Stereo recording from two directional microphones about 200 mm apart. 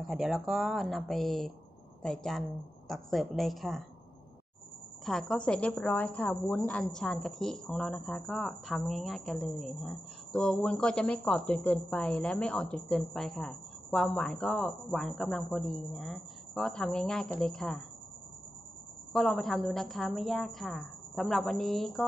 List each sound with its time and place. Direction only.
0.0 s a woman's voice: centre (ahead or behind)
5.0 s a woman's voice: centre (ahead or behind)
19.1 s a woman's voice: centre (ahead or behind)